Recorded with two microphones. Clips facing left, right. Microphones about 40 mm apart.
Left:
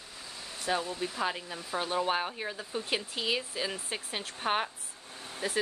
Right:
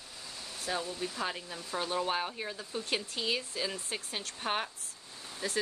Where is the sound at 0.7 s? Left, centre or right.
Centre.